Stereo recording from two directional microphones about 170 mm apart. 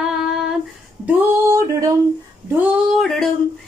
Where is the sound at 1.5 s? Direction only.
20° right (ahead or behind).